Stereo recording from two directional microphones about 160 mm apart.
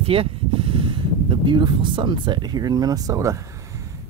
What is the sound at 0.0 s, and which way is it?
Speech, 35° right (ahead or behind).